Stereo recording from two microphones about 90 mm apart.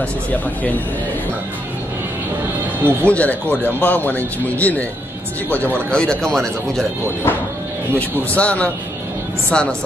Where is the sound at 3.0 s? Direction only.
15° left (ahead or behind).